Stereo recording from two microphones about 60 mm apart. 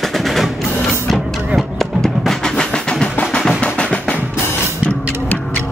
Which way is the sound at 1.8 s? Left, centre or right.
Centre.